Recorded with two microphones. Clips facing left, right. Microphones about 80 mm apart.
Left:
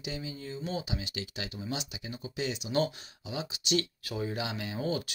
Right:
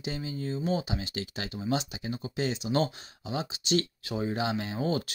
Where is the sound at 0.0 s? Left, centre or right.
Right.